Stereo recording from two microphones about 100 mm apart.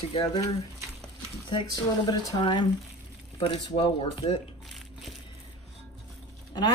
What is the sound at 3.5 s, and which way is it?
Speech, 60° left (ahead or behind).